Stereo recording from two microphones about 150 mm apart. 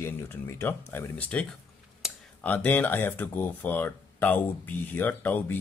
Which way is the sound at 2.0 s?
Centre (ahead or behind).